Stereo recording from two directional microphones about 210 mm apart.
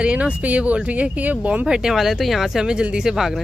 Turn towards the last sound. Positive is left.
turn(degrees=0)  # may be behind; listen again after turning